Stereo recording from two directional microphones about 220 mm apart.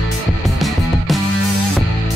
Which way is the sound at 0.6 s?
Centre (ahead or behind).